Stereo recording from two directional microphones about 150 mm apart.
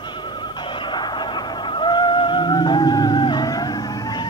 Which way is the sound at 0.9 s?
30° left (ahead or behind).